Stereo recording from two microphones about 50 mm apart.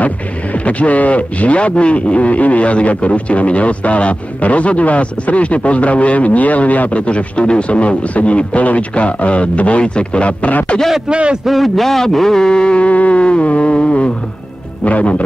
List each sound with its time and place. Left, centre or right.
0.0 s speech: left
11.1 s a man's voice: right
11.4 s speech: centre; by 15.2 s left